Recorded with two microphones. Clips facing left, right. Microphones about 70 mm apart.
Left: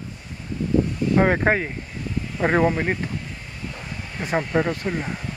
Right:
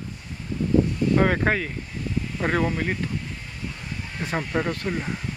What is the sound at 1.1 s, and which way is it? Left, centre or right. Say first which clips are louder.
Speech: left 3 dB; centre.